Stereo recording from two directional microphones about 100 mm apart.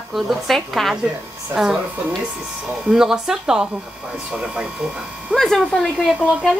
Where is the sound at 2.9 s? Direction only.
5° right (ahead or behind).